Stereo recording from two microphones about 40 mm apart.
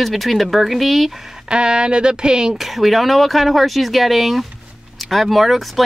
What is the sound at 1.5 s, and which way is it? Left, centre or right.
Speech, right.